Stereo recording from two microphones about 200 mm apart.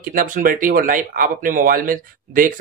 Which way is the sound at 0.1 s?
45° right (ahead or behind).